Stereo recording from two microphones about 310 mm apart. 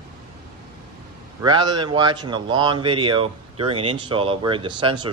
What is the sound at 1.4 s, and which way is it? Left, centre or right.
A man's voice, centre.